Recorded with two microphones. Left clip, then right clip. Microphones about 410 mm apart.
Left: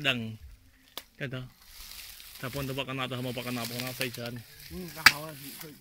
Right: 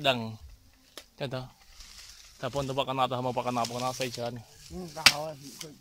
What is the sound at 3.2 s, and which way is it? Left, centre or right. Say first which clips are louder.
Speech: right 6 dB; right.